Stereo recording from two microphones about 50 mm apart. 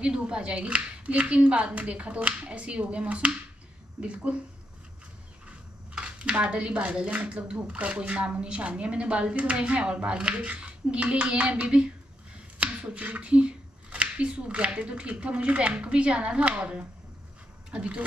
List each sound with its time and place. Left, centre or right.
0.0 s speech: centre
5.9 s a sound: centre
6.3 s speech: right